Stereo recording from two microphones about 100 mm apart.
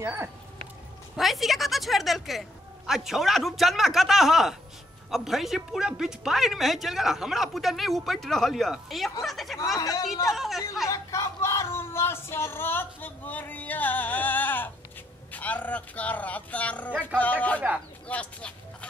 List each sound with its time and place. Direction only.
0.0 s speech: 25° right (ahead or behind)
1.1 s speech: centre (ahead or behind)
9.8 s speech: 35° left (ahead or behind)
10.3 s speech: centre (ahead or behind)
10.9 s a sound: 30° left (ahead or behind)
15.3 s speech: 15° left (ahead or behind)
18.0 s a sound: 15° left (ahead or behind)